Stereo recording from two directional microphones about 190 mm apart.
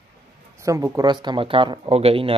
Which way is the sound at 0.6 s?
15° right (ahead or behind).